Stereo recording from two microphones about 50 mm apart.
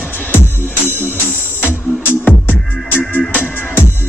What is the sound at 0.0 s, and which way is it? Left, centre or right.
Music, left.